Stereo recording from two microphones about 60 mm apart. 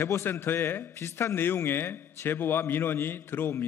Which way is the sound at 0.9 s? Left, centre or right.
Left.